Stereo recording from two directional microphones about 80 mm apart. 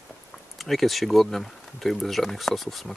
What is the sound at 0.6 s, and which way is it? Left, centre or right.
Speech, centre.